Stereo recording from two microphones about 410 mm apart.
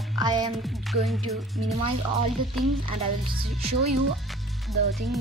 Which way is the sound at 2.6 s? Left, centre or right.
Centre.